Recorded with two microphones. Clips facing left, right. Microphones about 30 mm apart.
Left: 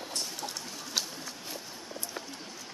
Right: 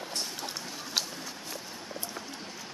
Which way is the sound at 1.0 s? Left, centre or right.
Centre.